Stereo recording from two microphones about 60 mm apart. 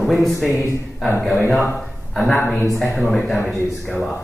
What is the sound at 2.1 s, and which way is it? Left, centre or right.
A man's voice, centre.